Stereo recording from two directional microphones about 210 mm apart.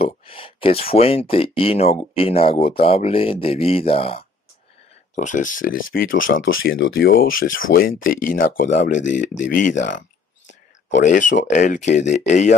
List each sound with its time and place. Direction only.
0.0 s speech: 25° left (ahead or behind)
5.1 s speech: 35° left (ahead or behind)